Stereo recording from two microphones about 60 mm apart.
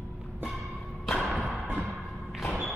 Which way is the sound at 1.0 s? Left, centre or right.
Centre.